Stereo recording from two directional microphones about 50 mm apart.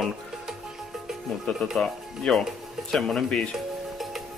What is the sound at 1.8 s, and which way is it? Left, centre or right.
Speech, centre.